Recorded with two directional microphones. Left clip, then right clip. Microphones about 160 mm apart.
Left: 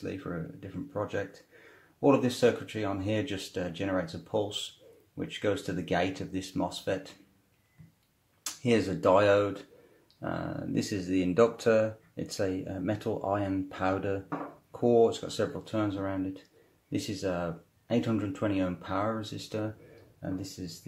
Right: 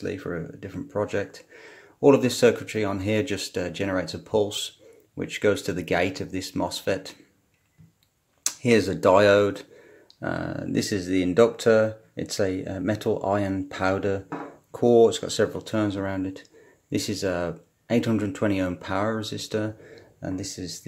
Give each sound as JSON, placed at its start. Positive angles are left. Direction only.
{"t": 0.0, "sound": "speech", "side_deg": -35}
{"t": 8.6, "sound": "speech", "side_deg": -35}